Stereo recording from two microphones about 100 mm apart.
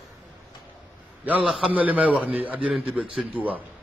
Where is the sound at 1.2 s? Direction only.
15° right (ahead or behind).